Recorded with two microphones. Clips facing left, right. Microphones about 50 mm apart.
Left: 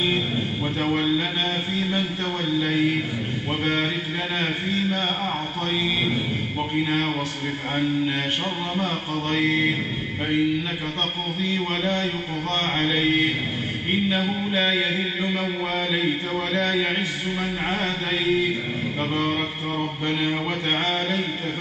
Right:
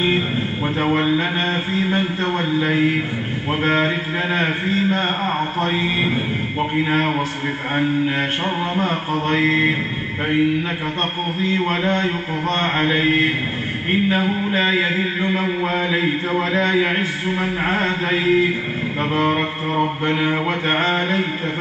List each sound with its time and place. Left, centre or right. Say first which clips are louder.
0.7 s mantra: right 4 dB; right
1.7 s a sound: right 5 dB; right
2.5 s mantra: right 2 dB; right
8.7 s mantra: right 5 dB; right
11.4 s mantra: right 5 dB; right